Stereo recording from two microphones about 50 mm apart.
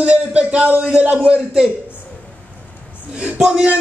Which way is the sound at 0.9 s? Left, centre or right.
Right.